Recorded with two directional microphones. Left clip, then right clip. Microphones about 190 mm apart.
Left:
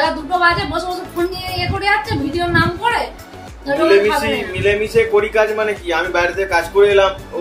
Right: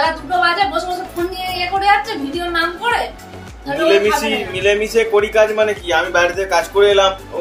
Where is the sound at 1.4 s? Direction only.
15° left (ahead or behind).